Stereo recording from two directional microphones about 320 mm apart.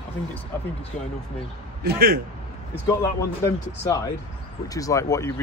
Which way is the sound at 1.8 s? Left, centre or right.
Right.